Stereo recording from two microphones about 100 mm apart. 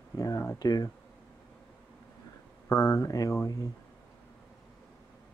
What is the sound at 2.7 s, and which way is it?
Speech, 30° left (ahead or behind).